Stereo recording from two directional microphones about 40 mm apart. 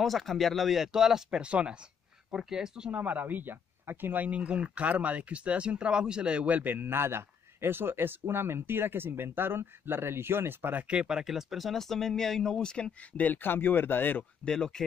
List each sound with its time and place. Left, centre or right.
0.0 s speech: centre
1.4 s speech: right
2.3 s speech: centre
2.9 s speech: right
4.3 s speech: right
6.5 s speech: right
11.1 s speech: centre
13.2 s speech: left
14.4 s speech: centre